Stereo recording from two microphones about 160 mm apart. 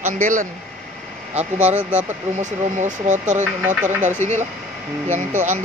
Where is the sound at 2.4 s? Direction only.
50° right (ahead or behind).